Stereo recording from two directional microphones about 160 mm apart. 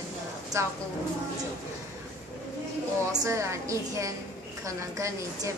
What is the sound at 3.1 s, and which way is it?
A woman's voice, 20° right (ahead or behind).